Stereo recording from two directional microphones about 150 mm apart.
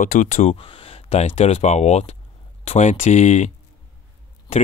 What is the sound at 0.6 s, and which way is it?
Speech, 35° left (ahead or behind).